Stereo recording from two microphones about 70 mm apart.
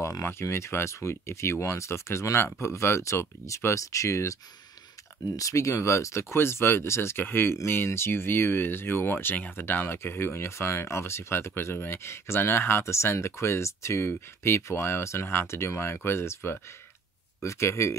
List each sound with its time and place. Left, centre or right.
0.0 s speech: left